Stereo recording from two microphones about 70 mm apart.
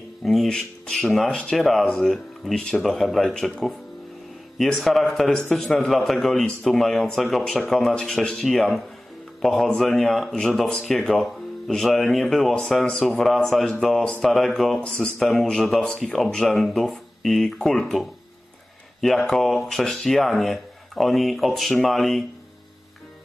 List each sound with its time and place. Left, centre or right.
0.2 s speech: centre
4.6 s speech: centre